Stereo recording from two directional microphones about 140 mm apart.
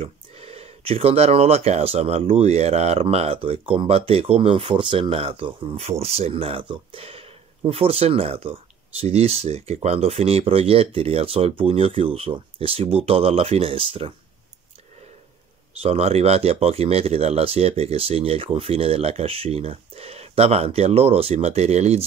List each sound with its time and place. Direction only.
0.0 s speech: 45° right (ahead or behind)
15.8 s speech: 45° right (ahead or behind)